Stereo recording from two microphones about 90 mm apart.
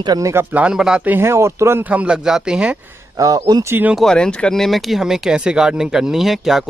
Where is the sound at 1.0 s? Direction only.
25° right (ahead or behind).